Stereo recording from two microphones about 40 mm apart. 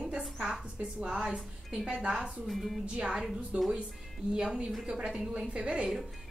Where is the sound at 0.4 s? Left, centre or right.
Centre.